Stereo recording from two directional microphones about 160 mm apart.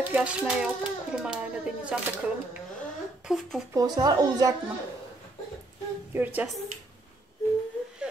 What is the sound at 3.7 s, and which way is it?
Speech, 25° right (ahead or behind).